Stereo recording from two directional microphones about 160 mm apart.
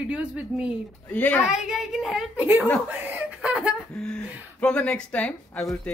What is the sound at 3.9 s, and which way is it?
Speech, 5° left (ahead or behind).